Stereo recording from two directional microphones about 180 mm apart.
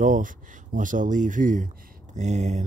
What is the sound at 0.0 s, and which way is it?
Speech, 45° right (ahead or behind).